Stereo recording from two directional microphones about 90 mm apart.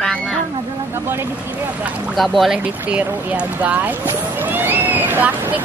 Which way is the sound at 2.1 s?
Centre (ahead or behind).